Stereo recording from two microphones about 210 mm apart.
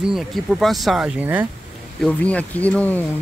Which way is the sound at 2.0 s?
5° left (ahead or behind).